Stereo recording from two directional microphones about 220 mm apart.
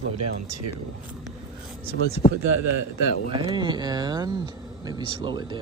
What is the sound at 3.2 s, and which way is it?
Speech, 25° right (ahead or behind).